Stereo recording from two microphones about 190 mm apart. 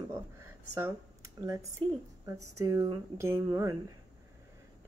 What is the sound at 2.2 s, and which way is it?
Speech, 15° right (ahead or behind).